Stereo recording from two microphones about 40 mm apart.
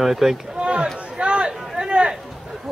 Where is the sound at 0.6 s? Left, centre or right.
Right.